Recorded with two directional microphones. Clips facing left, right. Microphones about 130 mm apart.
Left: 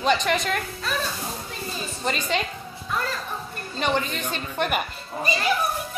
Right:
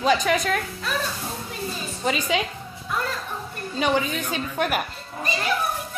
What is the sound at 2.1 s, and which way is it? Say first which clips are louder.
Speech: right 2 dB; 5° right (ahead or behind).